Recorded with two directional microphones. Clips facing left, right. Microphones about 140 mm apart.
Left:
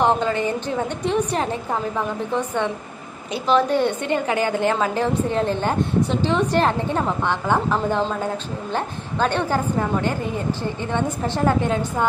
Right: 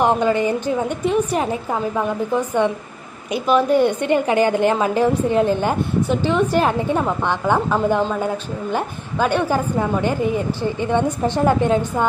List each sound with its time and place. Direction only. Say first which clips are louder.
0.0 s a woman's voice: right 3 dB; 15° right (ahead or behind)
6.9 s a woman's voice: right 2 dB; 15° right (ahead or behind)
10.9 s a woman's voice: right 4 dB; 15° right (ahead or behind)